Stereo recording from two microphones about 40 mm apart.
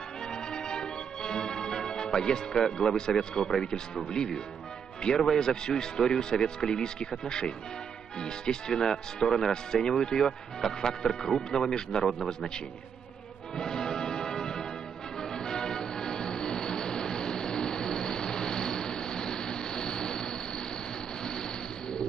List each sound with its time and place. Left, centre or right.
0.3 s music: centre
2.1 s speech: centre
13.6 s music: centre
21.2 s vehicle: centre